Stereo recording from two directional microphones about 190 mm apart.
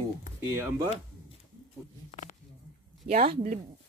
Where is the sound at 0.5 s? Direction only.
15° right (ahead or behind).